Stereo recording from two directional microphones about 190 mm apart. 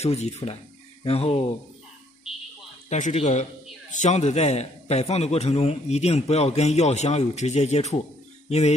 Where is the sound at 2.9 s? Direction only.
35° left (ahead or behind).